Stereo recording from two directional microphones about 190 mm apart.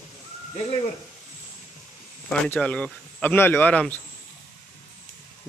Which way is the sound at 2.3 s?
5° left (ahead or behind).